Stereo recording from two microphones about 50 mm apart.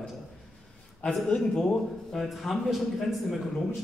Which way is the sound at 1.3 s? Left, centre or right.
Left.